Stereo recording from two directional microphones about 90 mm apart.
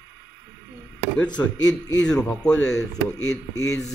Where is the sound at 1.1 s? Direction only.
15° left (ahead or behind).